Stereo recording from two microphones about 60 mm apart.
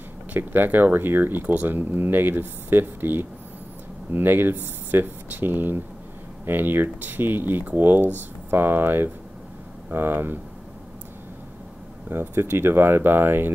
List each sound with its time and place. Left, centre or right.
0.3 s speech: right
12.1 s speech: right